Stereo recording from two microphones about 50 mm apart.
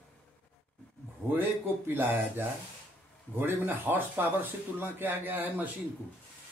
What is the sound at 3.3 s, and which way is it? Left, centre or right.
Speech, right.